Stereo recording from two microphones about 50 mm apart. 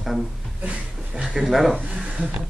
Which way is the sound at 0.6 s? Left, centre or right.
Right.